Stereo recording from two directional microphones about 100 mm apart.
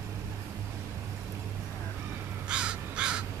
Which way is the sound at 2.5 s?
10° right (ahead or behind).